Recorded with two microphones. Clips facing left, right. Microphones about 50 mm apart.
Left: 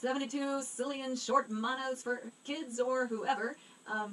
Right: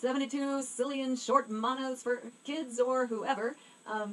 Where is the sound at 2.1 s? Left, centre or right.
Right; by 4.0 s centre.